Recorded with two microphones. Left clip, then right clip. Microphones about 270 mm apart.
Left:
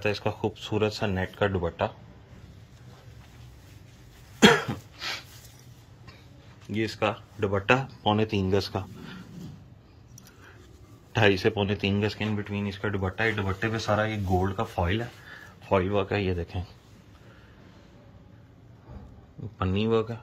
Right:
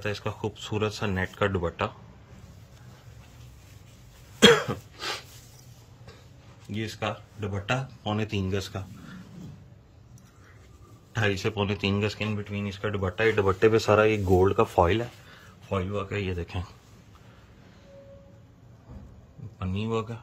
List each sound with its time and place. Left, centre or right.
0.0 s speech: centre
4.4 s cough: centre
4.9 s a sound: right
6.7 s speech: centre
11.1 s speech: centre
13.6 s speech: right
15.2 s speech: centre
19.6 s speech: centre